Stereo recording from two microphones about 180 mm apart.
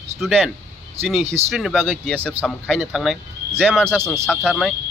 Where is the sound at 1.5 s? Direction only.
Centre (ahead or behind).